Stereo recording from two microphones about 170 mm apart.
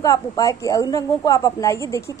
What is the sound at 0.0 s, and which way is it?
A woman's voice, 20° left (ahead or behind).